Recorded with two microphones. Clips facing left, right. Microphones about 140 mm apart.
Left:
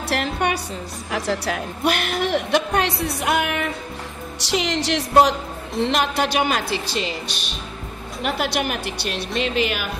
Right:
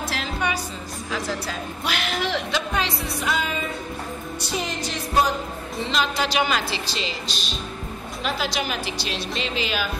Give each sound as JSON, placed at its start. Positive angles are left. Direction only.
{"t": 0.1, "sound": "music", "side_deg": 60}
{"t": 1.1, "sound": "a woman's voice", "side_deg": 70}
{"t": 4.4, "sound": "music", "side_deg": 80}
{"t": 5.8, "sound": "a woman's voice", "side_deg": 60}